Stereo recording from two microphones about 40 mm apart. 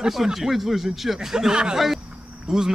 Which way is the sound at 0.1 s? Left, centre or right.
Centre.